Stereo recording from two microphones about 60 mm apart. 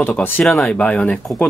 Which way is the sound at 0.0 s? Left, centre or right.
Left.